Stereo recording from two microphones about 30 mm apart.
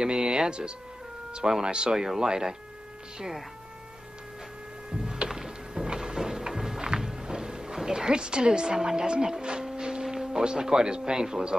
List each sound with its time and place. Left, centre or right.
0.0 s speech: right
2.0 s speech: centre
4.9 s music: right
8.7 s speech: centre
9.8 s music: right
10.1 s speech: right